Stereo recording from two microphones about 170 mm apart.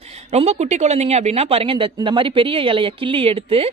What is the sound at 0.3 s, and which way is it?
Speech, 40° right (ahead or behind).